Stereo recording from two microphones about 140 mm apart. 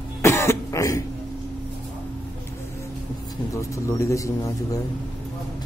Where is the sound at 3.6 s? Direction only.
20° left (ahead or behind).